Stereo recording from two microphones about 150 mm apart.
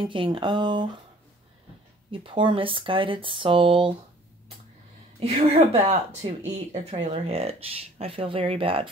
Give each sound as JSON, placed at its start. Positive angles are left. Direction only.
{"t": 0.0, "sound": "speech", "side_deg": -35}
{"t": 2.0, "sound": "speech", "side_deg": -35}
{"t": 5.2, "sound": "speech", "side_deg": -40}